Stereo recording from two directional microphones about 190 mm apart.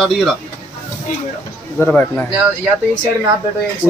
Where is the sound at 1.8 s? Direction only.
10° left (ahead or behind).